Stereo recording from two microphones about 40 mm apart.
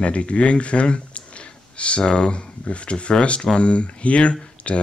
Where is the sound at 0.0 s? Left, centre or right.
Left.